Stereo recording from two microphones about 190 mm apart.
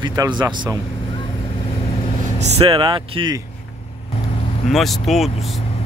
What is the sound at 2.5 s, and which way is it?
Speech, 30° right (ahead or behind).